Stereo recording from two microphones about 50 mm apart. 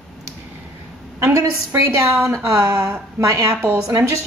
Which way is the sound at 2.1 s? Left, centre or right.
Right.